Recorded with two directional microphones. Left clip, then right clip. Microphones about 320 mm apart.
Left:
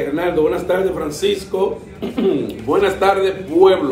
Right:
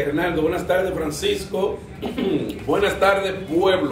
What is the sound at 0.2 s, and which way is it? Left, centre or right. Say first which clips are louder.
A man's voice: left 5 dB; centre.